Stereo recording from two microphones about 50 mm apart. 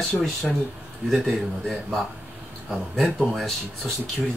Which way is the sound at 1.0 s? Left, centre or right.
Centre.